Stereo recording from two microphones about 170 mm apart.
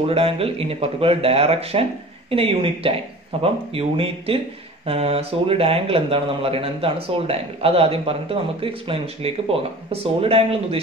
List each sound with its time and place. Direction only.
0.0 s speech: 35° right (ahead or behind)